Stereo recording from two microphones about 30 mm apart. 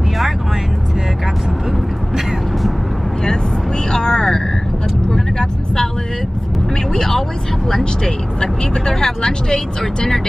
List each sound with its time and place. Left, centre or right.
3.9 s vehicle: left
8.0 s speech: left